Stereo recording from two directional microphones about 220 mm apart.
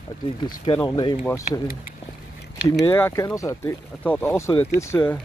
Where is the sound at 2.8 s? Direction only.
10° left (ahead or behind).